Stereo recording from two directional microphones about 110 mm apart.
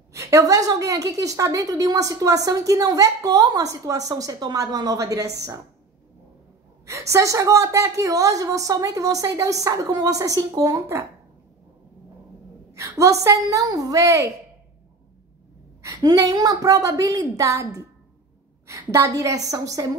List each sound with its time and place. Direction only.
0.1 s a woman's voice: 30° right (ahead or behind)
6.9 s a woman's voice: 25° right (ahead or behind)
12.7 s a woman's voice: 30° right (ahead or behind)
15.8 s a woman's voice: 30° right (ahead or behind)